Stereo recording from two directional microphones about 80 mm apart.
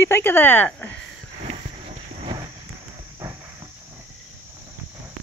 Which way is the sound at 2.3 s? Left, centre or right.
Right.